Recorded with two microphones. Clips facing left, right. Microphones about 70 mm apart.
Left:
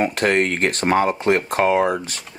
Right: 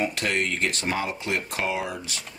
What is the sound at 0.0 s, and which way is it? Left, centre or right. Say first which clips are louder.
Speech: left 8 dB; left.